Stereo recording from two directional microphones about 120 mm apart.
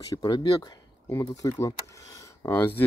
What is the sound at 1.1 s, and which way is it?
Speech, 25° left (ahead or behind).